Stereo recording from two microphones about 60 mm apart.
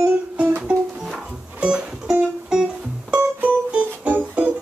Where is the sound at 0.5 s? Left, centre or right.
Right.